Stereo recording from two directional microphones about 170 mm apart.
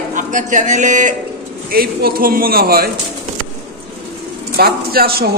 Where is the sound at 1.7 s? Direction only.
60° right (ahead or behind).